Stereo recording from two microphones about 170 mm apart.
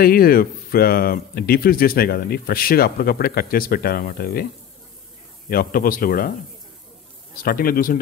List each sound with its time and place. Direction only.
0.0 s speech: 60° left (ahead or behind)
5.5 s speech: 60° left (ahead or behind)
7.4 s speech: 60° left (ahead or behind)